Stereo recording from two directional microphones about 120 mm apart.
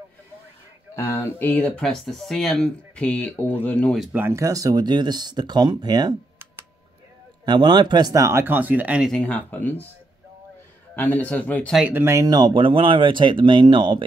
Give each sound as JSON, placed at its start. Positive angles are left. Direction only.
{"t": 0.9, "sound": "speech", "side_deg": 25}
{"t": 4.1, "sound": "speech", "side_deg": -20}
{"t": 7.4, "sound": "speech", "side_deg": -40}
{"t": 9.1, "sound": "speech", "side_deg": 10}
{"t": 11.0, "sound": "speech", "side_deg": 15}
{"t": 11.9, "sound": "speech", "side_deg": -20}